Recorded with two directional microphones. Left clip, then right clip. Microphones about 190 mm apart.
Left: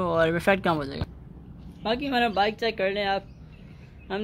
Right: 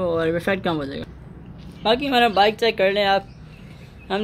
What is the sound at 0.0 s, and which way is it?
Speech, 20° left (ahead or behind).